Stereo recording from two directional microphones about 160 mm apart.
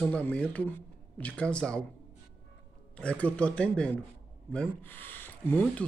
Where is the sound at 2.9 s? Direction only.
5° left (ahead or behind).